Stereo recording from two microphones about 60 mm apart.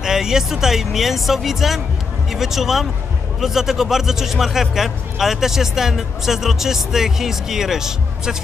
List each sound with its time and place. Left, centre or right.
0.0 s speech: centre